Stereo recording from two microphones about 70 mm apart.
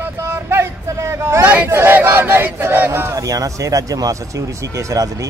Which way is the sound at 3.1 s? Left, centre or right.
Right.